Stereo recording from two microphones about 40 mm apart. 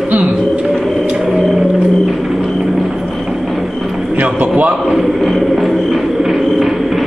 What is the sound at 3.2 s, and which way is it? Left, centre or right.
Music, centre.